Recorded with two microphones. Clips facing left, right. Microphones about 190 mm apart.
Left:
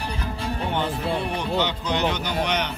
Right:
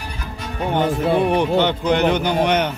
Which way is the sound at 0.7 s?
55° right (ahead or behind).